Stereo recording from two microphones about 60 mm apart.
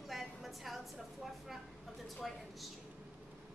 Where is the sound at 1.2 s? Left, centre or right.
Centre.